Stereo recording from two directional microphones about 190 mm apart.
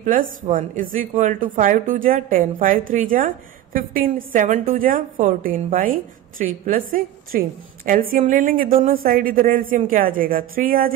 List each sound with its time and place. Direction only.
0.0 s a woman's voice: 45° right (ahead or behind)